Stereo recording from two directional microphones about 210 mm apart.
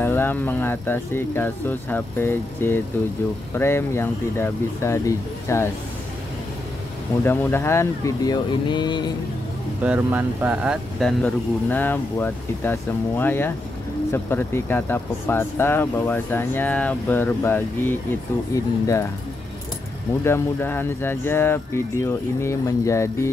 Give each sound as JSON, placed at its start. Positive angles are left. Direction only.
{"t": 0.0, "sound": "speech", "side_deg": 10}
{"t": 7.2, "sound": "speech", "side_deg": 10}
{"t": 9.8, "sound": "speech", "side_deg": -10}
{"t": 20.2, "sound": "speech", "side_deg": 10}